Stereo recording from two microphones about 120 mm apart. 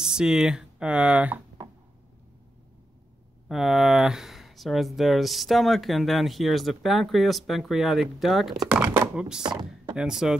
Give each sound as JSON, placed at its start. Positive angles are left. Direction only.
{"t": 0.0, "sound": "speech", "side_deg": -5}
{"t": 3.4, "sound": "speech", "side_deg": 0}
{"t": 8.6, "sound": "chopping", "side_deg": -15}
{"t": 9.1, "sound": "speech", "side_deg": -10}